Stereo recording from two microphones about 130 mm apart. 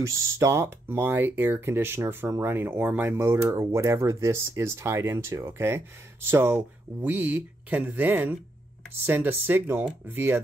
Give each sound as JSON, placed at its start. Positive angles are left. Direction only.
{"t": 0.0, "sound": "speech", "side_deg": -25}